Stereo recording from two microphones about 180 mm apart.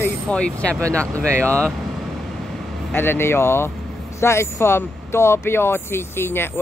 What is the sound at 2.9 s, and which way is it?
Speech, 10° left (ahead or behind).